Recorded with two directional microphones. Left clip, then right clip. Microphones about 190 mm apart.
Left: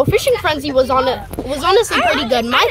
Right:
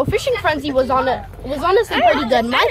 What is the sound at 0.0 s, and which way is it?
Speech, 20° left (ahead or behind).